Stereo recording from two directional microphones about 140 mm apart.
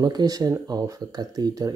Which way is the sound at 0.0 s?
25° right (ahead or behind).